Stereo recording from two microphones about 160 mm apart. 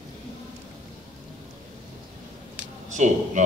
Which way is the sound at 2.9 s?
50° right (ahead or behind).